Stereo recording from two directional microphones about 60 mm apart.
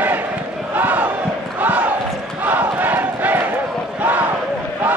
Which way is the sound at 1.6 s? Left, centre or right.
Right.